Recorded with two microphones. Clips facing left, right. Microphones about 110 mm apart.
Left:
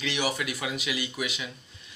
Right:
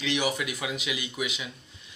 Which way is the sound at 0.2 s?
10° right (ahead or behind).